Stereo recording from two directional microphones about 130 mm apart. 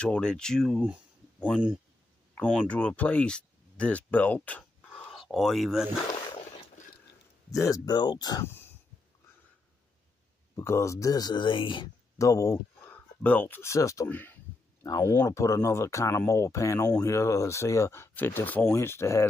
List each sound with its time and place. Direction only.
0.0 s speech: 5° left (ahead or behind)
1.4 s speech: 10° right (ahead or behind)
2.7 s speech: 10° left (ahead or behind)
7.5 s speech: 25° left (ahead or behind)
8.5 s a sound: 15° left (ahead or behind)
10.5 s speech: 20° left (ahead or behind); by 11.9 s 40° left (ahead or behind)
12.2 s speech: 25° left (ahead or behind)
12.9 s speech: 15° left (ahead or behind)
14.0 s a sound: 15° left (ahead or behind)
15.0 s speech: 20° left (ahead or behind)